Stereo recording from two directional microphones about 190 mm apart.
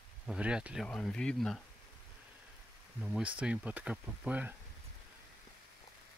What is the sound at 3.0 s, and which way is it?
Speech, 5° right (ahead or behind).